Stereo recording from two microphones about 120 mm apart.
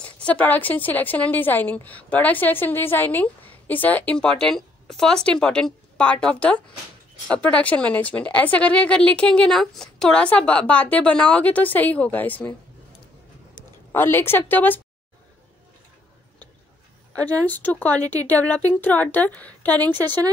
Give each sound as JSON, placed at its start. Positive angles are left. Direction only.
{"t": 0.0, "sound": "a woman's voice", "side_deg": 10}
{"t": 13.9, "sound": "a woman's voice", "side_deg": 20}
{"t": 17.5, "sound": "a woman's voice", "side_deg": 15}